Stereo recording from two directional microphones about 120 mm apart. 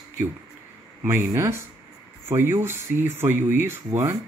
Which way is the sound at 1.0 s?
20° right (ahead or behind).